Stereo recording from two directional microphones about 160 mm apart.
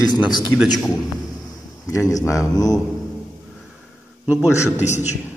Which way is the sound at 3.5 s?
Centre (ahead or behind).